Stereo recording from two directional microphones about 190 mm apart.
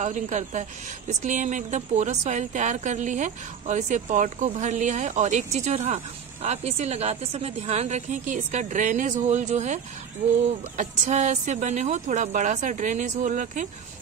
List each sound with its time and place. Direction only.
0.0 s a woman's voice: 40° right (ahead or behind)
10.8 s a woman's voice: 40° right (ahead or behind)